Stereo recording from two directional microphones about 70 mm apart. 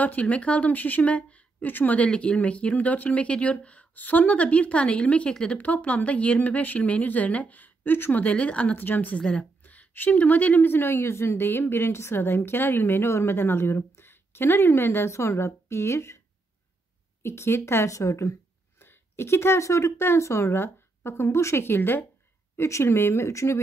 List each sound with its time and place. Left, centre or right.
0.0 s a woman's voice: left
17.2 s a woman's voice: left
18.8 s speech: left
22.6 s a woman's voice: left